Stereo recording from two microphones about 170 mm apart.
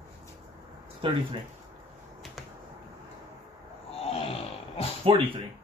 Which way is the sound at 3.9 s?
35° left (ahead or behind).